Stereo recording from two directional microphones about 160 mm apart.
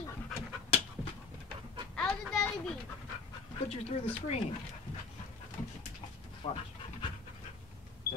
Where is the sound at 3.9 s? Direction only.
40° left (ahead or behind).